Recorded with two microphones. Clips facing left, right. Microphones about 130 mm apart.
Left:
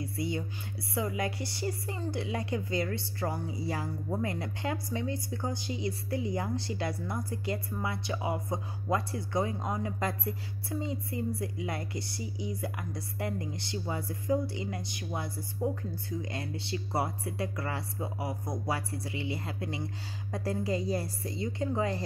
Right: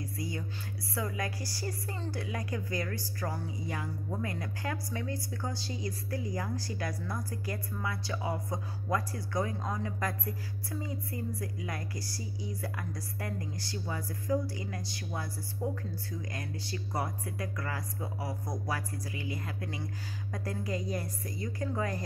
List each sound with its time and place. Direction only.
0.0 s a sound: 25° left (ahead or behind)
0.9 s a woman's voice: 20° left (ahead or behind)
15.6 s music: 15° left (ahead or behind)
16.1 s a woman's voice: 25° left (ahead or behind)